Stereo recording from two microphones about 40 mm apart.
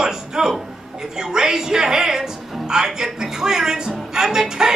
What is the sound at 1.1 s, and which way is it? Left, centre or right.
A woman's voice, centre.